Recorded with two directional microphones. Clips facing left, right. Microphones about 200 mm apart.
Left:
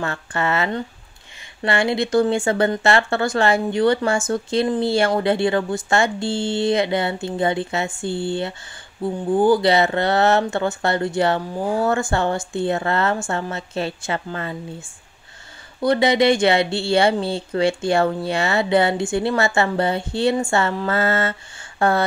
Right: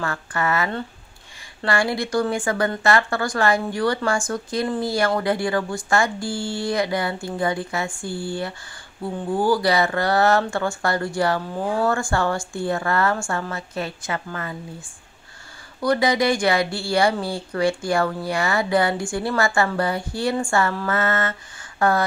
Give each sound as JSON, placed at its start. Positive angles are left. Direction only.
{"t": 0.0, "sound": "speech", "side_deg": 25}
{"t": 15.8, "sound": "speech", "side_deg": 25}